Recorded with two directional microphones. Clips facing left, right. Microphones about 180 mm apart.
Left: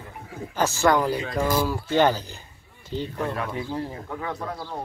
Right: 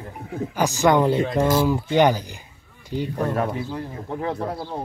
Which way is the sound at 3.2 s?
35° right (ahead or behind).